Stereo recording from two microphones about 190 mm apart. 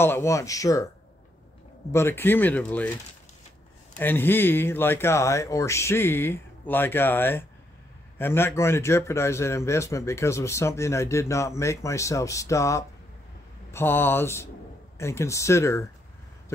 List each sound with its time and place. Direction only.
0.0 s a man's voice: 15° left (ahead or behind)
1.9 s a man's voice: 15° left (ahead or behind)
4.0 s a man's voice: 10° left (ahead or behind)